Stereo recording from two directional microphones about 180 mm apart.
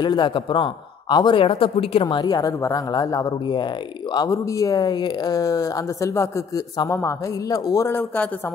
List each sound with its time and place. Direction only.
0.0 s speech: 25° left (ahead or behind)